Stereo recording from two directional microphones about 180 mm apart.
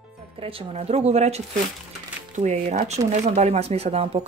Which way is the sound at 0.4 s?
30° right (ahead or behind).